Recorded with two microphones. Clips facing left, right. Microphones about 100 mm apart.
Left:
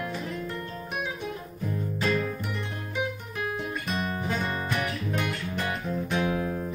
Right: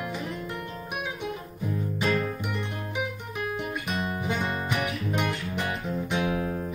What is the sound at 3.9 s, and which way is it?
Guitar, 15° right (ahead or behind).